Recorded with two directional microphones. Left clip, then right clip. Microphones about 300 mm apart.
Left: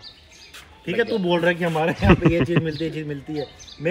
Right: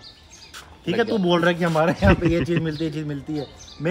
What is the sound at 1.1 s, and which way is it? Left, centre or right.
A man's voice, centre.